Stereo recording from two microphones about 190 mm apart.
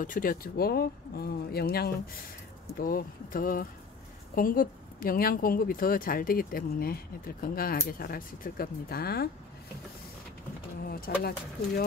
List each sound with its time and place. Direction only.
0.0 s a woman's voice: 45° left (ahead or behind)
10.9 s speech: 55° left (ahead or behind)